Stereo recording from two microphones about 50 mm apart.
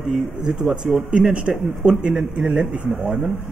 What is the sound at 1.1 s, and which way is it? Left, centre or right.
A man's voice, centre.